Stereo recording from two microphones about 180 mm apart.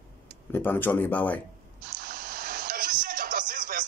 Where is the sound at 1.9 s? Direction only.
55° right (ahead or behind).